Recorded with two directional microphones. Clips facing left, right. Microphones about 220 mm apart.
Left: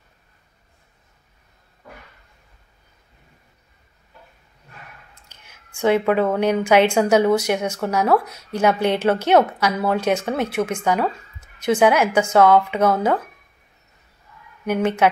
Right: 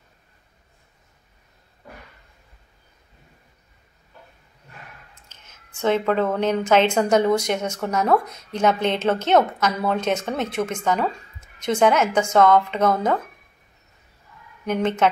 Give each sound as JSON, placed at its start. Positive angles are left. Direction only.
{"t": 5.3, "sound": "a sound", "side_deg": 10}
{"t": 5.8, "sound": "speech", "side_deg": 10}
{"t": 14.7, "sound": "speech", "side_deg": 10}